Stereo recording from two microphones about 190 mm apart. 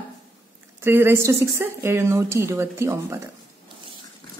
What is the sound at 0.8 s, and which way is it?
A woman's voice, 10° right (ahead or behind).